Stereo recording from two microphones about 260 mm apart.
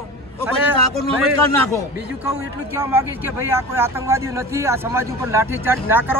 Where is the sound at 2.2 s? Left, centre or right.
Centre.